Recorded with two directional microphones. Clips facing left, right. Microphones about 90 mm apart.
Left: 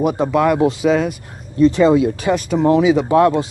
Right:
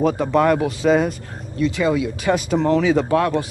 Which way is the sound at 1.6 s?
30° left (ahead or behind).